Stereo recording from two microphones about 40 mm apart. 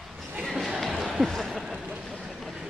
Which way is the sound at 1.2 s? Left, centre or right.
Centre.